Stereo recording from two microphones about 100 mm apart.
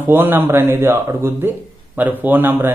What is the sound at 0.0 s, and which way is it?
A man's voice, 20° right (ahead or behind).